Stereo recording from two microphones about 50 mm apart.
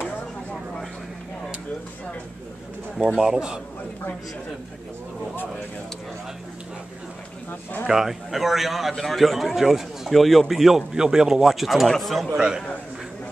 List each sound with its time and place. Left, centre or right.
3.0 s speech: centre
7.9 s a man's voice: centre
12.3 s speech: centre